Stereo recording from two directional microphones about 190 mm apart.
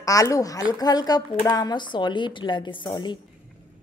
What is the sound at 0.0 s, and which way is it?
A woman's voice, 15° left (ahead or behind).